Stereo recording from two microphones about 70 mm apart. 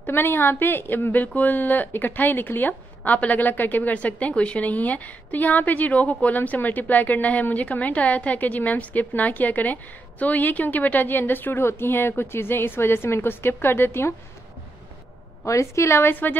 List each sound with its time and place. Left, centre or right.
0.0 s a woman's voice: left
15.4 s a woman's voice: left